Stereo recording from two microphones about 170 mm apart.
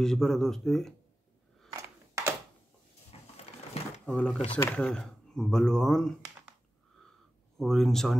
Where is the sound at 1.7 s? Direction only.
15° right (ahead or behind).